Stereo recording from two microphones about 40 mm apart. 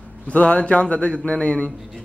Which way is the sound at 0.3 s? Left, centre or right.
Left.